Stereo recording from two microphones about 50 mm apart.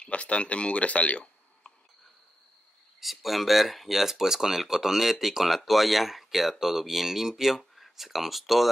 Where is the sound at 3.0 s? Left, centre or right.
Centre.